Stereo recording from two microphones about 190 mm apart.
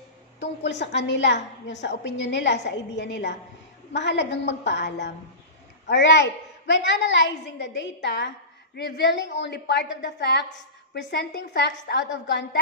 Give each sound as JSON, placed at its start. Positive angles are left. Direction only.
{"t": 0.7, "sound": "a woman's voice", "side_deg": 65}